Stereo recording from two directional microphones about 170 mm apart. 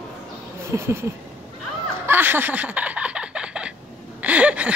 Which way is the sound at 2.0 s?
10° right (ahead or behind).